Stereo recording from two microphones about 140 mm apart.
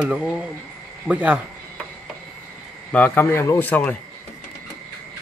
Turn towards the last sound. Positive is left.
turn(degrees=10)  # may be behind; listen again after turning